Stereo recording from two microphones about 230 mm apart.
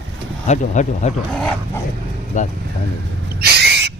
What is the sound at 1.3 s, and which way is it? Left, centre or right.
Dog, centre.